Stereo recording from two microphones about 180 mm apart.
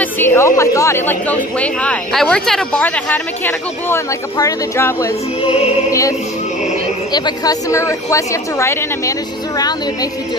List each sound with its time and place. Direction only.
0.0 s speech: 10° left (ahead or behind)